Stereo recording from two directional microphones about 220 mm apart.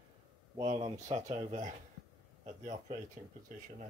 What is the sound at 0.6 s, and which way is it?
Speech, 30° right (ahead or behind).